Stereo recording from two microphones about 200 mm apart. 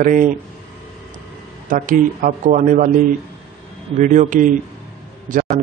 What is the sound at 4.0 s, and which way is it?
Speech, 40° right (ahead or behind).